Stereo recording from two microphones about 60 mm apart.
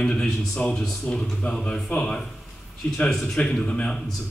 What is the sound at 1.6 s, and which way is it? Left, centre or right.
Speech, left.